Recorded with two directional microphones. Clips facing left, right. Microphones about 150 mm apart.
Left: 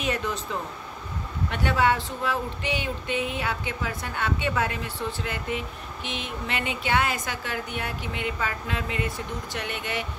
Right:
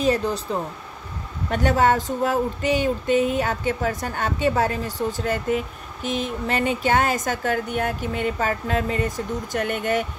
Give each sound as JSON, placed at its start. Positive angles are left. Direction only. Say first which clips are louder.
{"t": 0.0, "sound": "speech", "louder": "right 7 dB", "side_deg": -35}